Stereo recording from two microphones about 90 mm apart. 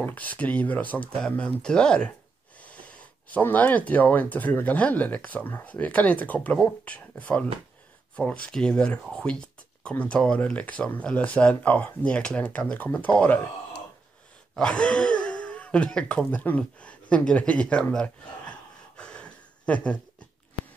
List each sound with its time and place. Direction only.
0.0 s speech: 20° left (ahead or behind)
14.5 s speech: 10° left (ahead or behind)
18.9 s a sound: 10° left (ahead or behind)